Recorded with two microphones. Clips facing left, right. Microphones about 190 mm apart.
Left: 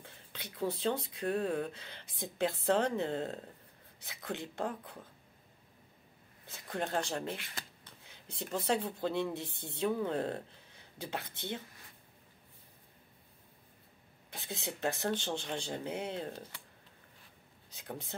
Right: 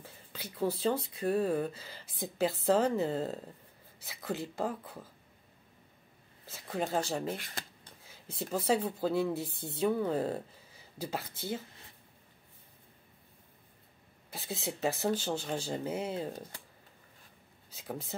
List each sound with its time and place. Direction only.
0.0 s speech: 5° right (ahead or behind)
6.4 s speech: 5° right (ahead or behind)
7.3 s speech: 40° right (ahead or behind)
8.0 s a sound: centre (ahead or behind)
8.5 s speech: centre (ahead or behind)
14.3 s speech: centre (ahead or behind)
17.6 s speech: 5° right (ahead or behind)